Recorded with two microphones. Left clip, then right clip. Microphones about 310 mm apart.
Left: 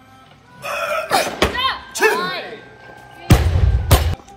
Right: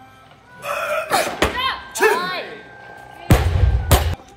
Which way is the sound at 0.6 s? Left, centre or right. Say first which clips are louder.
Left 1 dB; centre.